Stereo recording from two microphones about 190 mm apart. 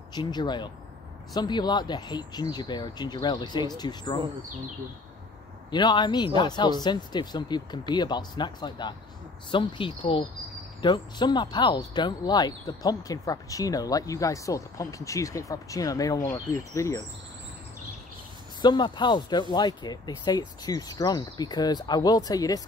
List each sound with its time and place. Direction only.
0.1 s speech: 20° left (ahead or behind)
5.7 s speech: 25° left (ahead or behind)
18.6 s speech: 25° left (ahead or behind)